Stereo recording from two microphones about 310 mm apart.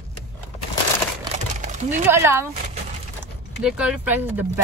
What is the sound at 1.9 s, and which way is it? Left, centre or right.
Speech, centre.